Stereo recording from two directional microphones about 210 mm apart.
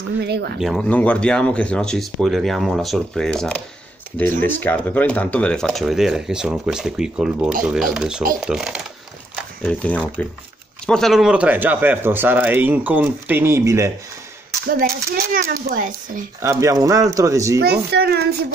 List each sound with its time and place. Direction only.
0.2 s speech: 50° right (ahead or behind)
0.6 s speech: centre (ahead or behind)
15.3 s speech: 45° right (ahead or behind)
16.3 s speech: 15° right (ahead or behind)
17.6 s speech: 50° right (ahead or behind)